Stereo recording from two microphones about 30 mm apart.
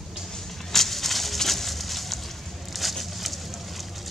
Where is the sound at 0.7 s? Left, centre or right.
Centre.